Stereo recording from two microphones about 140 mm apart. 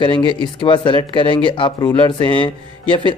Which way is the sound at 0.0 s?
35° left (ahead or behind).